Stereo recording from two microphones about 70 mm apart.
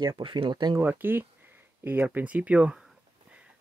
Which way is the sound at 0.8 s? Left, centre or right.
Right.